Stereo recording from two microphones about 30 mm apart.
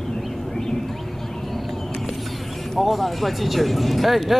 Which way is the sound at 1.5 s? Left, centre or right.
Centre.